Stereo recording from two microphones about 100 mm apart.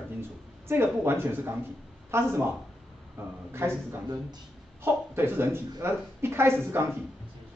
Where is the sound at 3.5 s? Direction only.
25° right (ahead or behind).